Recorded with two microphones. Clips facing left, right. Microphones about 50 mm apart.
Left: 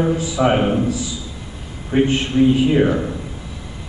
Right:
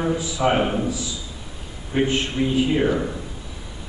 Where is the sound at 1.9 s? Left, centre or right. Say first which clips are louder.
Left 5 dB; left.